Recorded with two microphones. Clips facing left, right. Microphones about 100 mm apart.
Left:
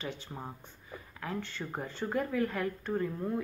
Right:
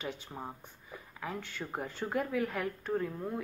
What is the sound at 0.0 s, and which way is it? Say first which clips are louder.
Speech: even; 10° right (ahead or behind).